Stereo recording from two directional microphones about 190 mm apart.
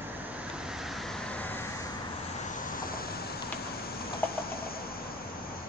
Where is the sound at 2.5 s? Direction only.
45° left (ahead or behind).